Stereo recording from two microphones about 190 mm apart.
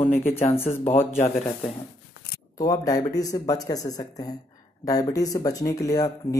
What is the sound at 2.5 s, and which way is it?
Speech, 20° left (ahead or behind).